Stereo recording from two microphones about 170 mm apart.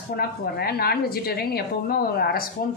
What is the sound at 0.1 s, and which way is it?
A woman's voice, 65° left (ahead or behind).